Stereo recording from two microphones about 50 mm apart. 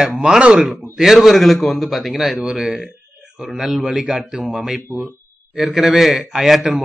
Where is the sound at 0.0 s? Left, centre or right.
Centre.